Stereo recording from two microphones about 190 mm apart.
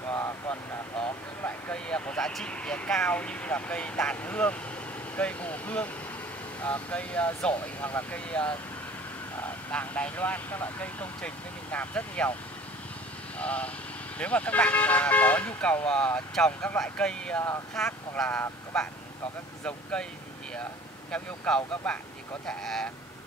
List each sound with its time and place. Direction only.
0.1 s vehicle: 10° left (ahead or behind)
1.4 s speech: 5° left (ahead or behind)
13.4 s speech: 5° left (ahead or behind)
21.1 s speech: 5° left (ahead or behind)